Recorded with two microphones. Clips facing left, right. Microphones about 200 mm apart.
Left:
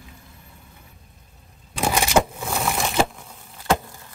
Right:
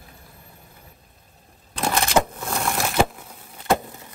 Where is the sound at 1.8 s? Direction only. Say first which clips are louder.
Left 1 dB; 10° left (ahead or behind).